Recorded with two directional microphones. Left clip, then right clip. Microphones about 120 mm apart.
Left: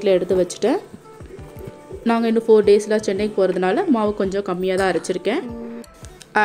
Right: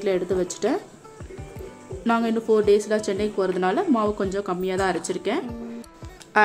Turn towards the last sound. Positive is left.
turn(degrees=30)  # may be behind; listen again after turning